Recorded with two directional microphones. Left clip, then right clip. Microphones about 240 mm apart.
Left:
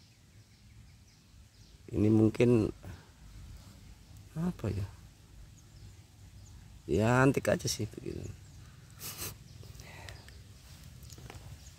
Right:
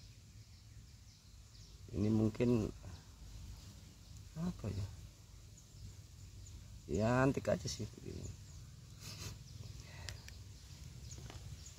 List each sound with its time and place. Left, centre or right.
2.0 s speech: left
4.4 s speech: left
6.9 s speech: left